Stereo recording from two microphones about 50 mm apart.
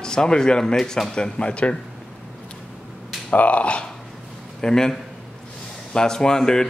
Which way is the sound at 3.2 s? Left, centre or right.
Left.